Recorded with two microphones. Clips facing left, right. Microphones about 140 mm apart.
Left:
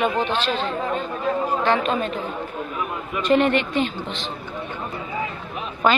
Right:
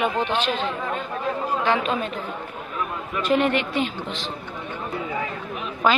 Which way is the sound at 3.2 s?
5° right (ahead or behind).